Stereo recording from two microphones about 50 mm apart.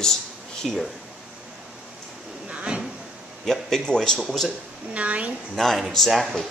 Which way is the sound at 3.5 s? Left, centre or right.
Centre.